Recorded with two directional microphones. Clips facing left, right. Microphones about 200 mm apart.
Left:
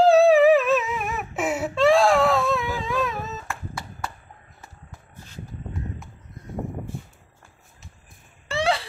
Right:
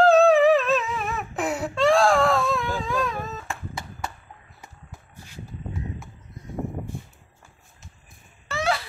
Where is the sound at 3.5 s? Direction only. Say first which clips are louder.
Even; 20° right (ahead or behind).